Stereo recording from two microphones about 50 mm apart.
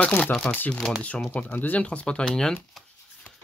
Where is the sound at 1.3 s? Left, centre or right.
Left.